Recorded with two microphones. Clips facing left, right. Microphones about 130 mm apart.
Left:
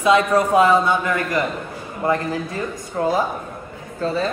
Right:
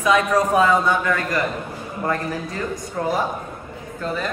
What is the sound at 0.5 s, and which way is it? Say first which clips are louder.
Speech: left 3 dB; 20° left (ahead or behind).